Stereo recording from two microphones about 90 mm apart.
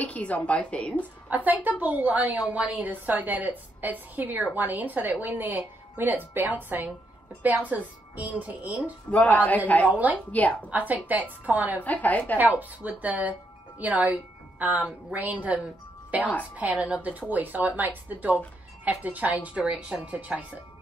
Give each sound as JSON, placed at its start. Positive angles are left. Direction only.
{"t": 0.0, "sound": "a woman's voice", "side_deg": 15}
{"t": 1.3, "sound": "a woman's voice", "side_deg": -20}
{"t": 9.1, "sound": "a woman's voice", "side_deg": 15}
{"t": 9.8, "sound": "a woman's voice", "side_deg": -15}
{"t": 10.3, "sound": "a woman's voice", "side_deg": 15}
{"t": 10.7, "sound": "a woman's voice", "side_deg": -20}
{"t": 11.8, "sound": "a woman's voice", "side_deg": 15}
{"t": 12.4, "sound": "a woman's voice", "side_deg": -20}